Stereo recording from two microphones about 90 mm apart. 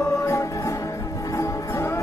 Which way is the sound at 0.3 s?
35° left (ahead or behind).